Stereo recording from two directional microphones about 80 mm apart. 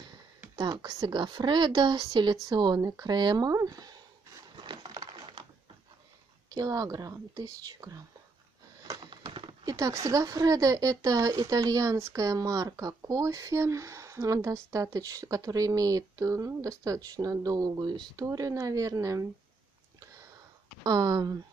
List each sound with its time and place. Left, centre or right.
0.6 s speech: right
1.0 s speech: right
4.6 s wood: right
6.5 s speech: right
9.0 s a sound: right
9.7 s speech: right
17.7 s speech: right
18.1 s speech: right
20.8 s speech: right